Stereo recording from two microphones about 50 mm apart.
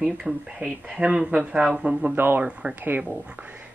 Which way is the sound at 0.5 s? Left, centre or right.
Right.